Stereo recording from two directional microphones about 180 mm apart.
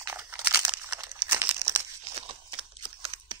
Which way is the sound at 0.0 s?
10° right (ahead or behind).